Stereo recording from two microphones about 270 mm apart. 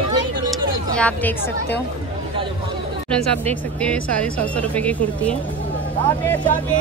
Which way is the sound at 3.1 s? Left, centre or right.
Centre.